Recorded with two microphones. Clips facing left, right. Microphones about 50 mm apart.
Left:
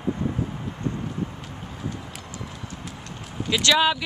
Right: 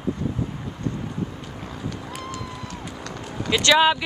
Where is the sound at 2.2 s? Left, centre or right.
Right.